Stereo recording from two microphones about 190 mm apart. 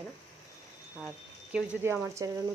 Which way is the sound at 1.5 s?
10° right (ahead or behind).